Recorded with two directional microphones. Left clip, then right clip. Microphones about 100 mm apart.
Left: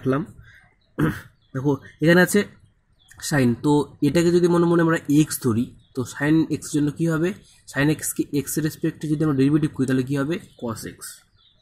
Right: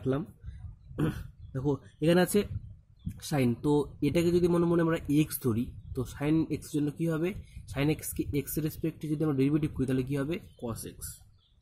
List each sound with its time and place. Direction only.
0.0 s speech: 5° left (ahead or behind)